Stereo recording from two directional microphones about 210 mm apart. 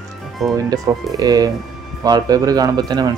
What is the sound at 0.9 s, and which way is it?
Speech, 15° right (ahead or behind).